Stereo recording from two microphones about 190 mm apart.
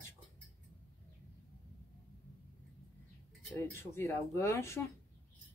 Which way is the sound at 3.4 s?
10° left (ahead or behind).